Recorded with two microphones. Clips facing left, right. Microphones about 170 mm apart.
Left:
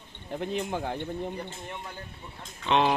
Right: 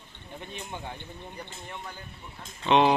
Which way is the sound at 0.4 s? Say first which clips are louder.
Left 9 dB; 90° left.